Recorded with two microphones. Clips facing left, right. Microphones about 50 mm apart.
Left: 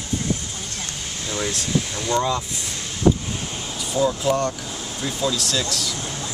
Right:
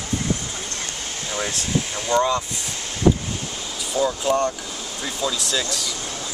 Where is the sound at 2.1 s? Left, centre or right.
Centre.